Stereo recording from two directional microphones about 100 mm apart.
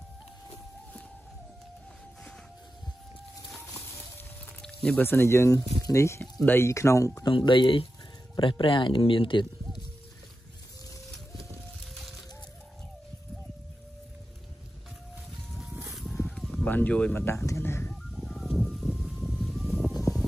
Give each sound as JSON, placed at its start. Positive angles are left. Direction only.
{"t": 4.8, "sound": "speech", "side_deg": 20}
{"t": 7.2, "sound": "speech", "side_deg": 50}
{"t": 15.5, "sound": "music", "side_deg": -5}
{"t": 15.9, "sound": "a sound", "side_deg": 0}
{"t": 16.7, "sound": "speech", "side_deg": 10}
{"t": 17.2, "sound": "a sound", "side_deg": 25}
{"t": 18.1, "sound": "music", "side_deg": 0}